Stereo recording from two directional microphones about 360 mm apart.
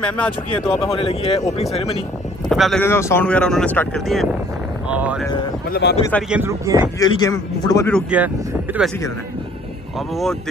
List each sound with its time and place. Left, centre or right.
0.7 s speech: centre
2.5 s speech: centre
4.8 s boat: centre
5.7 s speech: left
5.9 s speech: centre
6.3 s speech: centre
7.0 s speech: centre